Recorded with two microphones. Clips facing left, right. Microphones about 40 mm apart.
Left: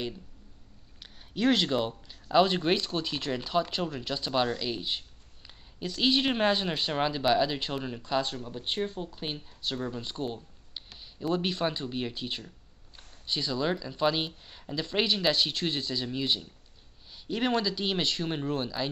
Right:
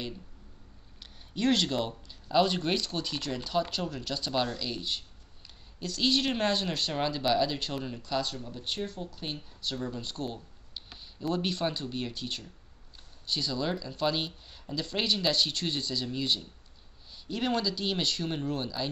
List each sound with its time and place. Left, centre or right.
1.3 s speech: centre